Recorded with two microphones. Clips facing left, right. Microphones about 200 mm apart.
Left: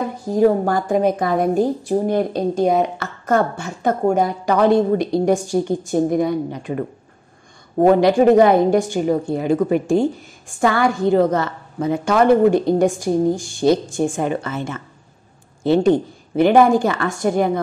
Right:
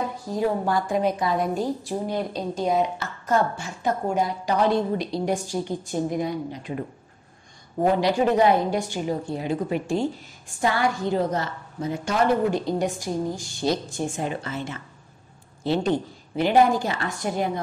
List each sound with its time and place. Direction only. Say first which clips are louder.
0.3 s a woman's voice: left 9 dB; 45° left (ahead or behind)
3.6 s a woman's voice: left 7 dB; 50° left (ahead or behind)